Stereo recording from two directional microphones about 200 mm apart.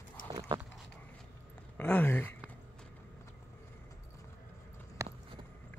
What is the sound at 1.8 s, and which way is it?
Speech, 10° left (ahead or behind).